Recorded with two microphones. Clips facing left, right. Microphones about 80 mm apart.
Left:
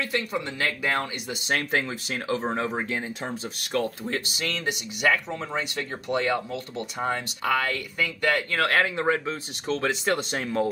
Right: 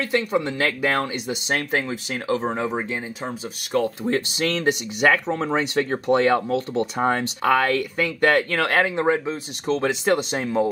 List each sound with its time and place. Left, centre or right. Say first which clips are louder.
0.0 s speech: right 6 dB; right
3.7 s speech: right 6 dB; right
9.0 s speech: right 4 dB; centre